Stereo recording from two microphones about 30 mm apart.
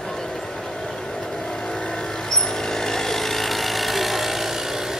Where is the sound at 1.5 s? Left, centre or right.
Left; by 4.9 s centre.